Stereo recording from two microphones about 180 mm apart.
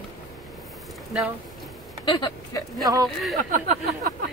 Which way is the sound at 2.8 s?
20° right (ahead or behind).